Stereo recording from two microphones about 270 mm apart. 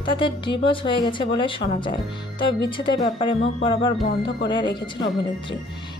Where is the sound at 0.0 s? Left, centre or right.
Centre.